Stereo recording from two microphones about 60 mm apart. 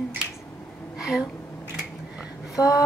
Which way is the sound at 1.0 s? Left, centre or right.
Centre.